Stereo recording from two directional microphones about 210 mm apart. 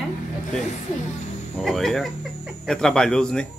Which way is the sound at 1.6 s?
Centre (ahead or behind).